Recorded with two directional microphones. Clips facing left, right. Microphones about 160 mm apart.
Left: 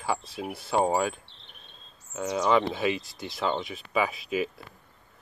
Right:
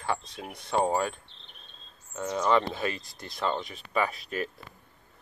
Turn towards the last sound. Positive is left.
turn(degrees=5)  # may be behind; listen again after turning